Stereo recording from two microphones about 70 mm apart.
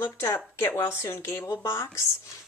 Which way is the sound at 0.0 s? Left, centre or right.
Left.